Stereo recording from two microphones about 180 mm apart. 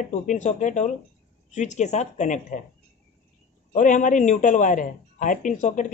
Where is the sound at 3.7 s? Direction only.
45° left (ahead or behind).